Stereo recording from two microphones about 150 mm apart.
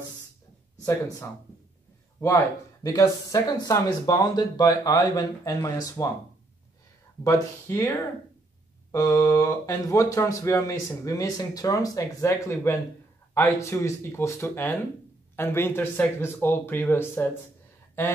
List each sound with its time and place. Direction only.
2.1 s speech: 15° left (ahead or behind)
7.2 s speech: 20° left (ahead or behind)